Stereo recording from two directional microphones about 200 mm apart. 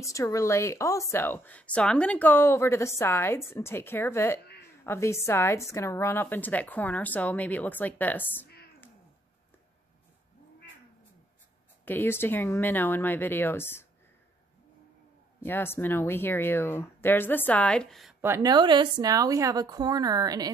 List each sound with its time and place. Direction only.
0.0 s speech: 15° left (ahead or behind)
11.8 s speech: 10° left (ahead or behind)
15.4 s speech: 10° left (ahead or behind)
18.2 s a woman's voice: 15° right (ahead or behind)